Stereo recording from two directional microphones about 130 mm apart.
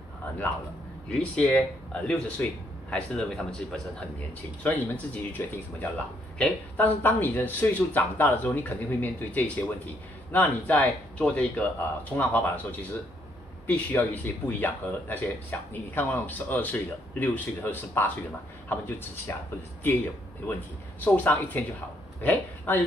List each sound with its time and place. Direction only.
1.1 s speech: 10° left (ahead or behind)
21.0 s speech: 10° left (ahead or behind)